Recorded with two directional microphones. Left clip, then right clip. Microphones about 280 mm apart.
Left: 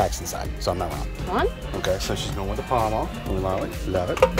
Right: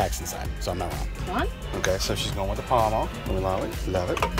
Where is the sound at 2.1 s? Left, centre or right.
Centre.